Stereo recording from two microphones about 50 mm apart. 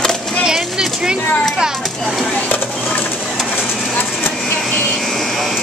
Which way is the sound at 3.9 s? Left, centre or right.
Left.